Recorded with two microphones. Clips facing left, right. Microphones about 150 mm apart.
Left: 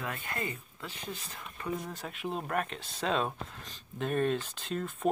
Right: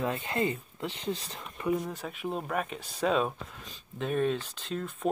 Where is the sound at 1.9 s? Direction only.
Centre (ahead or behind).